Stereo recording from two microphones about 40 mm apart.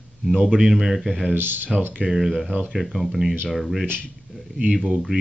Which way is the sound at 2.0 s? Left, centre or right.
Centre.